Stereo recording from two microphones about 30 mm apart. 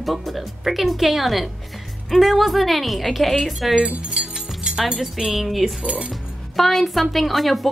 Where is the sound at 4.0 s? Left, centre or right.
Right.